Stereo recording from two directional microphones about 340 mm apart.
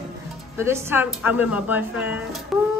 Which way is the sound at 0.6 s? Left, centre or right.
Centre.